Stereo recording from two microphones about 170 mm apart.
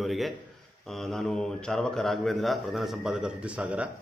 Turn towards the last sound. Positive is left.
turn(degrees=-10)  # may be behind; listen again after turning